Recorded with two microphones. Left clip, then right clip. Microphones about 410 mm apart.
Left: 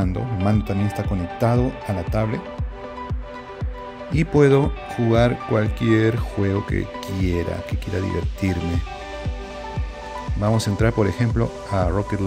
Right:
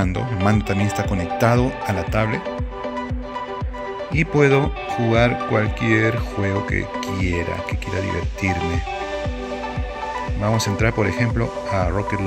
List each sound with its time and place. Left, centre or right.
0.0 s speech: centre
4.1 s speech: centre
10.4 s speech: centre